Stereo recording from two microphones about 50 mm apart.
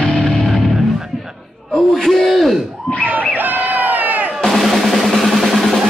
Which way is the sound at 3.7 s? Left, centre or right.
Right.